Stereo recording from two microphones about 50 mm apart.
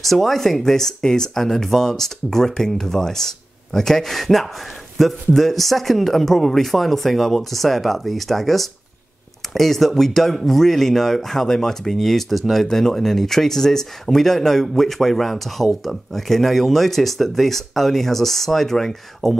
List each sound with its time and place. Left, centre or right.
0.0 s speech: centre